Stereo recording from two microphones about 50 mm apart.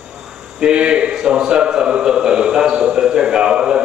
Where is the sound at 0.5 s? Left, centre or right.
Centre.